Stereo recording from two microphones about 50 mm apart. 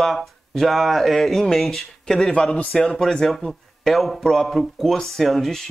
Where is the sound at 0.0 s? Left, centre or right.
Centre.